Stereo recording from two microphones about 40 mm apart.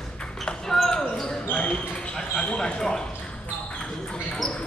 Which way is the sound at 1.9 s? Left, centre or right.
Centre.